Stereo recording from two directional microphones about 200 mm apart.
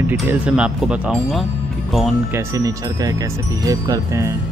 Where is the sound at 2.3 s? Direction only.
15° right (ahead or behind).